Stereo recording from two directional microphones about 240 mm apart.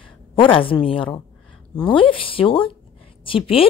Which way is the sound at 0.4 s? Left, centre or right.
Left.